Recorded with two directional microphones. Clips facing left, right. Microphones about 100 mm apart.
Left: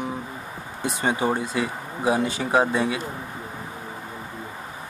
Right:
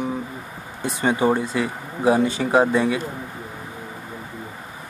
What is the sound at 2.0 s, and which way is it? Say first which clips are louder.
Speech: right 4 dB; 30° right (ahead or behind).